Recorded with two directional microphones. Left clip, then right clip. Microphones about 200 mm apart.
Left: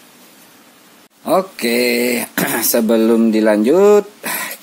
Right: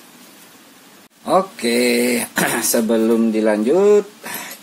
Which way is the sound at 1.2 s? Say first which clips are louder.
Left 1 dB; 30° left (ahead or behind).